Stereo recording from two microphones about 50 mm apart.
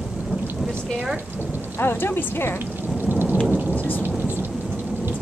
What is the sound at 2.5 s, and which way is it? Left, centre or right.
Thunder, right.